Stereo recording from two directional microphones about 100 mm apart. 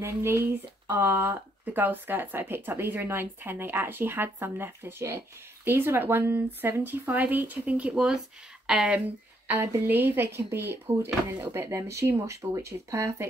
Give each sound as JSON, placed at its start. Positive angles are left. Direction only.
{"t": 0.0, "sound": "speech", "side_deg": -25}